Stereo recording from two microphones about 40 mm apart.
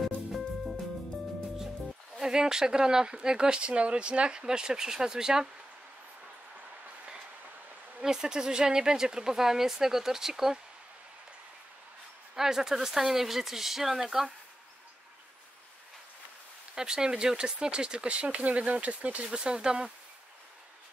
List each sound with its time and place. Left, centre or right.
0.0 s music: centre
2.1 s speech: centre
8.0 s speech: centre
12.4 s speech: centre
16.7 s speech: centre; by 19.4 s right
19.4 s speech: right